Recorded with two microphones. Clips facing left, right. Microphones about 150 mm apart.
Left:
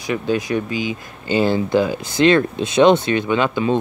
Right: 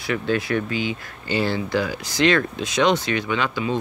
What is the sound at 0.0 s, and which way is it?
Speech, 20° left (ahead or behind).